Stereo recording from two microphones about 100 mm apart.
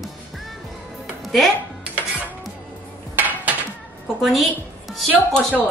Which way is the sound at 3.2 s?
15° right (ahead or behind).